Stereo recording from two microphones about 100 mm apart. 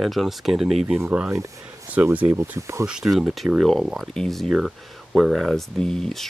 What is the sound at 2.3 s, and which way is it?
Speech, 30° right (ahead or behind).